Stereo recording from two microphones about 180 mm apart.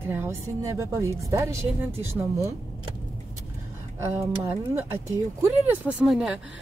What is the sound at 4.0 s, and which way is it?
Speech, 15° right (ahead or behind).